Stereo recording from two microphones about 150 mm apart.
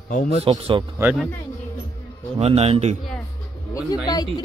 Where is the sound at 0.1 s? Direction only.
65° left (ahead or behind).